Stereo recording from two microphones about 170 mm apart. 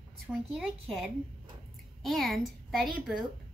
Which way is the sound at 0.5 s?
Centre (ahead or behind).